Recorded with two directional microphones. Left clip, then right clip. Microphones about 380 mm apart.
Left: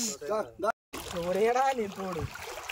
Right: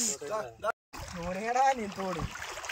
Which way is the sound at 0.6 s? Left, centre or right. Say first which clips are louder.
Left 3 dB; left.